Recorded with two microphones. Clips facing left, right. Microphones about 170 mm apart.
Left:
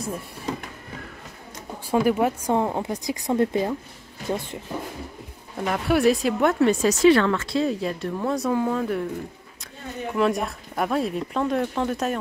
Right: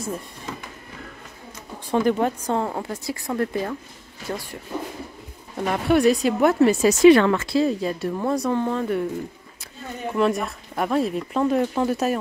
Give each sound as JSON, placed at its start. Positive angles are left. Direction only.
{"t": 1.9, "sound": "a woman's voice", "side_deg": 10}
{"t": 5.7, "sound": "speech", "side_deg": 0}
{"t": 10.1, "sound": "speech", "side_deg": 0}